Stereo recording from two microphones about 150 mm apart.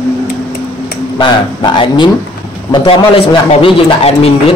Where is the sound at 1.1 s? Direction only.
30° left (ahead or behind).